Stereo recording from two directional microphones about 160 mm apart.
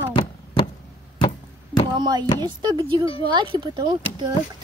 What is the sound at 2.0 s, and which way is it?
Speech, 25° right (ahead or behind).